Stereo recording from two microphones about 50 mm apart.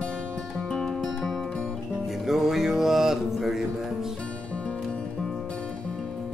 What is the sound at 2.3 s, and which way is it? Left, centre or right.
Music, centre.